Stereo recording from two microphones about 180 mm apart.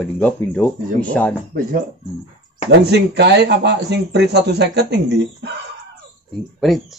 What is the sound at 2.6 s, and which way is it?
Speech, 65° right (ahead or behind).